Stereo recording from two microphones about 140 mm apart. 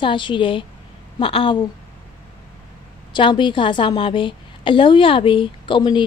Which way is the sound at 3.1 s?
35° left (ahead or behind).